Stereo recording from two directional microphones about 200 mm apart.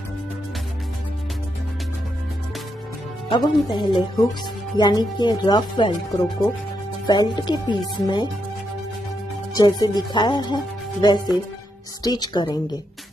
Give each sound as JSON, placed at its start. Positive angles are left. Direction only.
{"t": 3.3, "sound": "speech", "side_deg": 20}
{"t": 9.6, "sound": "speech", "side_deg": 20}